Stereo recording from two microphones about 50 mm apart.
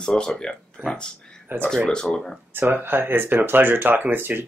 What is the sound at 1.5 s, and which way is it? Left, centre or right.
Speech, right.